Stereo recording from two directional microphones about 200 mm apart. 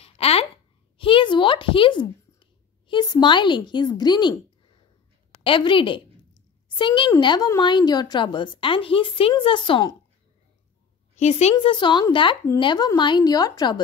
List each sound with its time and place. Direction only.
0.0 s a sound: 30° left (ahead or behind)
2.9 s a child's voice: 20° left (ahead or behind)
5.4 s a child's voice: 25° left (ahead or behind)
11.1 s a child's voice: 35° left (ahead or behind)